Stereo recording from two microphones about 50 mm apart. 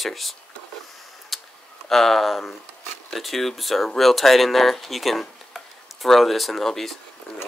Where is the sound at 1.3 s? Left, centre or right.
Centre.